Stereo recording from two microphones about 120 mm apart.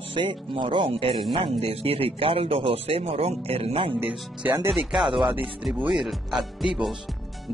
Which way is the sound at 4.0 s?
15° right (ahead or behind).